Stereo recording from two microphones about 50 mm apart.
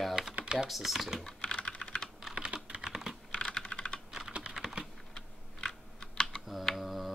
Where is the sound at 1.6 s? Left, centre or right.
Left.